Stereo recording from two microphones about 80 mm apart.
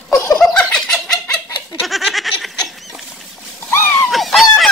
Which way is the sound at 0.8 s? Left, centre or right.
Centre.